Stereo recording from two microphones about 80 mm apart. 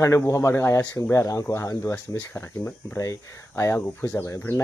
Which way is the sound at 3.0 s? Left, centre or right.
Left.